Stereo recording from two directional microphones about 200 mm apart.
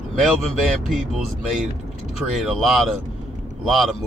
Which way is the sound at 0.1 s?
Centre (ahead or behind).